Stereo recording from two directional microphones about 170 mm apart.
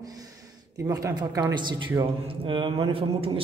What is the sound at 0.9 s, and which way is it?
A man's voice, 20° right (ahead or behind).